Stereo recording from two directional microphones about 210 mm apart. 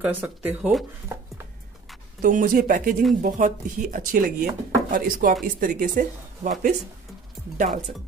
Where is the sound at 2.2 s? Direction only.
40° right (ahead or behind).